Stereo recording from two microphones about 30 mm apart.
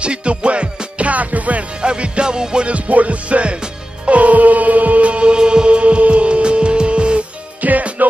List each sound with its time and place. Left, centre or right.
0.0 s music: right
1.8 s music: right
2.7 s music: right
4.1 s music: right
5.4 s music: right
7.6 s music: right